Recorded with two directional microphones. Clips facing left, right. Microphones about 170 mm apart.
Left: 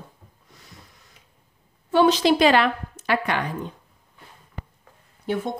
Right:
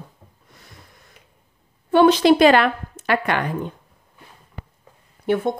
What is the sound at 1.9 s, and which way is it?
Speech, 60° right (ahead or behind).